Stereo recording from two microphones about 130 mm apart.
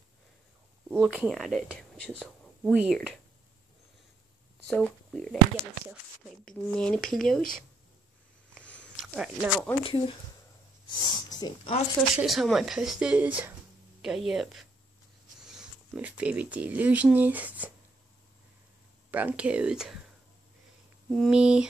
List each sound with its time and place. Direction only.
1.0 s speech: 5° right (ahead or behind)
2.6 s speech: 10° right (ahead or behind)
4.6 s speech: 5° left (ahead or behind)
6.4 s speech: 5° left (ahead or behind)
8.9 s speech: 5° right (ahead or behind)
9.8 s speech: 45° left (ahead or behind)
12.2 s speech: centre (ahead or behind)
19.0 s speech: 10° right (ahead or behind)
21.1 s speech: 5° left (ahead or behind)